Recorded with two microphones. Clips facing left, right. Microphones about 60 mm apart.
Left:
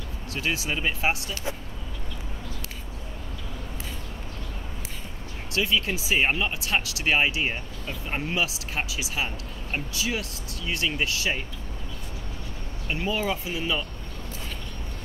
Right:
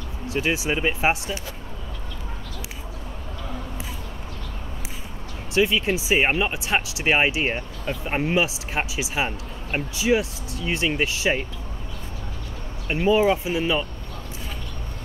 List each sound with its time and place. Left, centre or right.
0.3 s speech: right
5.5 s speech: right
12.8 s speech: right